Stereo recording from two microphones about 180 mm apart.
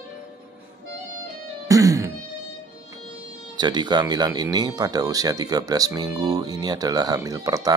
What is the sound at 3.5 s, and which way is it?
Speech, 25° right (ahead or behind).